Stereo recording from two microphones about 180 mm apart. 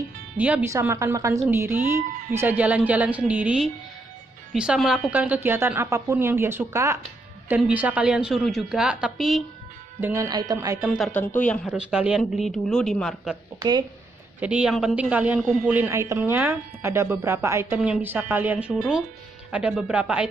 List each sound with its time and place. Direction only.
0.4 s a woman's voice: 10° right (ahead or behind)
9.9 s speech: 15° right (ahead or behind)
11.6 s a woman's voice: 5° right (ahead or behind)
13.6 s speech: 25° right (ahead or behind)
14.4 s a woman's voice: 5° right (ahead or behind)